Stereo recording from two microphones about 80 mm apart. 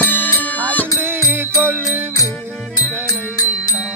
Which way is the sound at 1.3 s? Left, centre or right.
Right.